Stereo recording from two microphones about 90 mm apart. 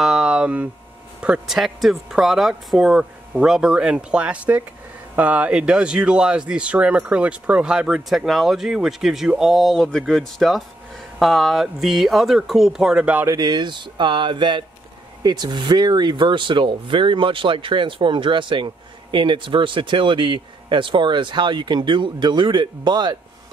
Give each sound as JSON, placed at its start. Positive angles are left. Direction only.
{"t": 0.0, "sound": "a sound", "side_deg": -5}
{"t": 1.2, "sound": "speech", "side_deg": -10}
{"t": 13.4, "sound": "speech", "side_deg": -55}